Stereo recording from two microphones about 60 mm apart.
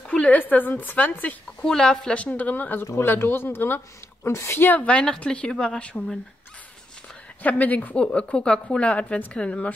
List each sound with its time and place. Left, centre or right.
0.0 s a sound: centre
0.4 s a woman's voice: left
1.6 s speech: centre
2.2 s speech: left
2.9 s speech: left
4.8 s a woman's voice: centre
7.4 s a woman's voice: left